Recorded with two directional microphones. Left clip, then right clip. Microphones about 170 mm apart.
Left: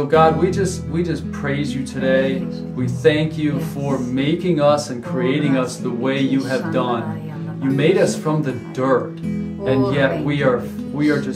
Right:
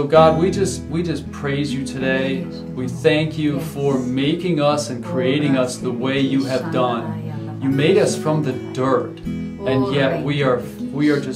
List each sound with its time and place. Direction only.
0.1 s speech: 20° right (ahead or behind)